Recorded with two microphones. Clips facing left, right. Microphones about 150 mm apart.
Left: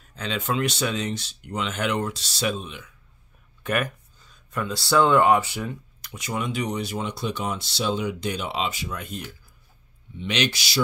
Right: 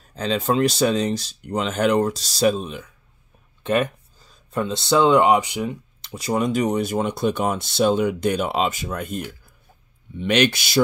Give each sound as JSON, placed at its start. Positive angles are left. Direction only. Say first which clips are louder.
{"t": 0.0, "sound": "speech", "louder": "right 7 dB", "side_deg": -35}
{"t": 3.6, "sound": "speech", "louder": "right 5 dB", "side_deg": -25}